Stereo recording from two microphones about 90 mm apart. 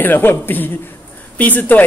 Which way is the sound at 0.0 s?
20° left (ahead or behind).